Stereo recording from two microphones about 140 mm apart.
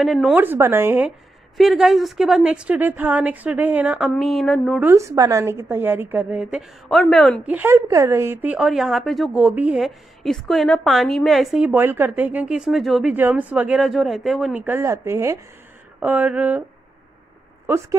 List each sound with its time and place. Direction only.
0.0 s a woman's voice: 5° right (ahead or behind)
0.4 s a woman's voice: 15° right (ahead or behind)
1.6 s a woman's voice: 5° right (ahead or behind)
4.8 s a woman's voice: 20° right (ahead or behind)
6.5 s a woman's voice: centre (ahead or behind)
7.4 s a woman's voice: 15° right (ahead or behind); by 9.3 s centre (ahead or behind)
9.3 s a woman's voice: 10° right (ahead or behind)
11.6 s a woman's voice: 15° right (ahead or behind)
13.1 s a woman's voice: 15° right (ahead or behind)
14.6 s a woman's voice: 15° right (ahead or behind)